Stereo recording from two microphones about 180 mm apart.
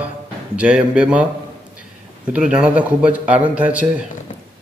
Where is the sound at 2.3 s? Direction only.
5° right (ahead or behind).